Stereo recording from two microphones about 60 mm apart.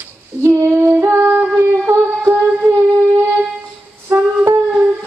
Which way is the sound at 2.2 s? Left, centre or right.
Right.